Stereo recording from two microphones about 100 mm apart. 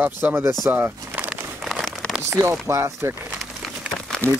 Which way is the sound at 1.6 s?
Centre (ahead or behind).